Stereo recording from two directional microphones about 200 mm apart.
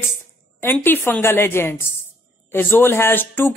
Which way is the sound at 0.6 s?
10° left (ahead or behind).